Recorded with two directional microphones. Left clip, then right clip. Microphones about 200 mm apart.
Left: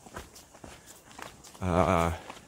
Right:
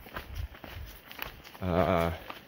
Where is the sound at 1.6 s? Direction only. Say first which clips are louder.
Left 2 dB; 15° left (ahead or behind).